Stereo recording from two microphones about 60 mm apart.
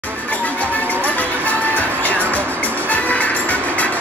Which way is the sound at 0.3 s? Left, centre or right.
Left.